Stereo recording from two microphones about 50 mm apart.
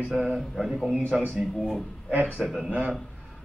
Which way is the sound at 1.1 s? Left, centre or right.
Centre.